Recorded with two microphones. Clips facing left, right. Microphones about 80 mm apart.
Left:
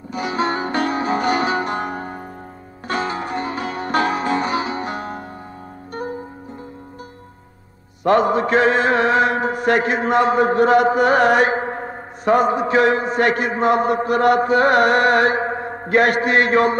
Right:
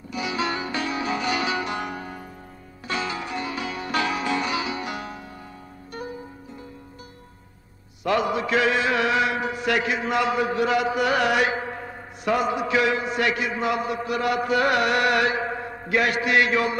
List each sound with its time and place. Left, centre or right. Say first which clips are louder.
0.1 s music: left 5 dB; left
8.0 s mantra: left 7 dB; left